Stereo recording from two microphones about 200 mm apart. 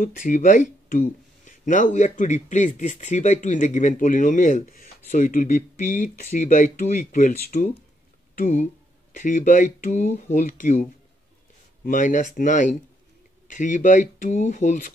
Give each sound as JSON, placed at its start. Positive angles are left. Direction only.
{"t": 0.0, "sound": "speech", "side_deg": 40}